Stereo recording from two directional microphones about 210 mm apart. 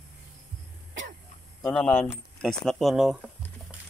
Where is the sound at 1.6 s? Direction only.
5° left (ahead or behind).